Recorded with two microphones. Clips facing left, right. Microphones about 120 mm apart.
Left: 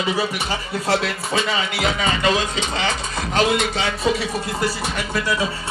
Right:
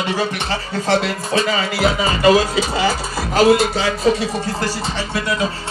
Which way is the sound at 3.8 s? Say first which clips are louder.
Right 4 dB; 35° right (ahead or behind).